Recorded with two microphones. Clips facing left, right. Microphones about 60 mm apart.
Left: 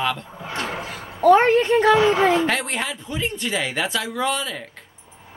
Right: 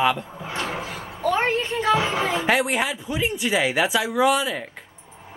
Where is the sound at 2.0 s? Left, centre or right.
Centre.